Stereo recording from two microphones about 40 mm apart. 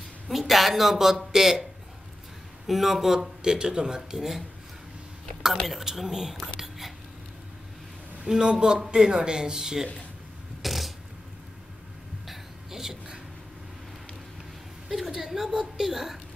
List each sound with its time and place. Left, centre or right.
0.3 s speech: centre
5.7 s speech: centre
8.3 s speech: centre
10.6 s a sound: centre
12.3 s throat clearing: centre
14.9 s speech: centre